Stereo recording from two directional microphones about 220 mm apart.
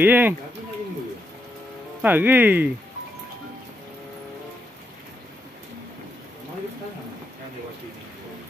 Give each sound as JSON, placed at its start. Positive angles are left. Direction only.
{"t": 0.0, "sound": "speech", "side_deg": -10}
{"t": 2.0, "sound": "speech", "side_deg": -10}